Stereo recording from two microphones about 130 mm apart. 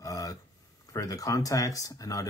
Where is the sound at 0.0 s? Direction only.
25° left (ahead or behind).